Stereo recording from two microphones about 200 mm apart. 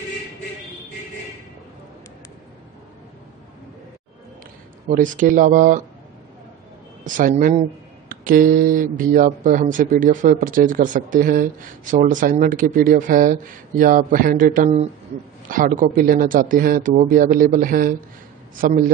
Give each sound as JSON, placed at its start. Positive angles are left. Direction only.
{"t": 4.8, "sound": "speech", "side_deg": -40}
{"t": 7.2, "sound": "speech", "side_deg": -40}